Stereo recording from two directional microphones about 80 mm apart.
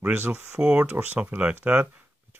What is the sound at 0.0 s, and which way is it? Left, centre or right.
Speech, right.